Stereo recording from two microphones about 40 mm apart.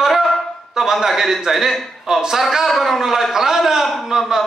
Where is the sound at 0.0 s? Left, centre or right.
Centre.